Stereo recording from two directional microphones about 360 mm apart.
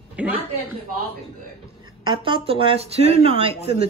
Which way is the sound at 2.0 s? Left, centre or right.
Centre.